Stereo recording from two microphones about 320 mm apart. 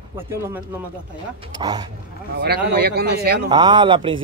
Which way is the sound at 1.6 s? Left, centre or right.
Centre.